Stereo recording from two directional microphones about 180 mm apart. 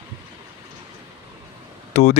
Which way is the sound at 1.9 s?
35° left (ahead or behind).